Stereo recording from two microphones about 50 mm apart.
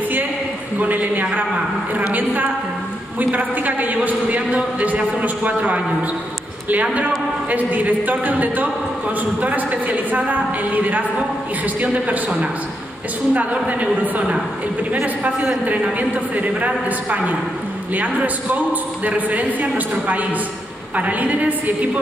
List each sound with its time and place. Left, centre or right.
0.7 s a man's voice: right
3.2 s a man's voice: right
13.3 s a woman's voice: right
15.6 s a man's voice: right
20.9 s a man's voice: right